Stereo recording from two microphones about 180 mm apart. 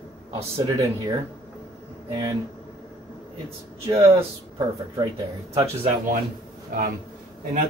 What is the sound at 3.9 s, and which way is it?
Speech, 15° right (ahead or behind).